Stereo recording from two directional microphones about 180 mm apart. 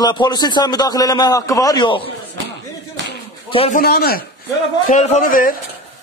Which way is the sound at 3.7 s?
55° left (ahead or behind).